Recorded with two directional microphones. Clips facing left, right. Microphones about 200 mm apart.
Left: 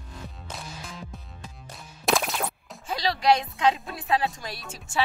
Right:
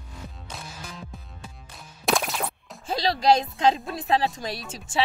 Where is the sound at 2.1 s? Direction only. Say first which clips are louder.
Even; centre (ahead or behind).